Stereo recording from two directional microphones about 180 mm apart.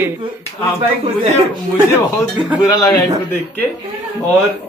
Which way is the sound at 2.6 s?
20° left (ahead or behind).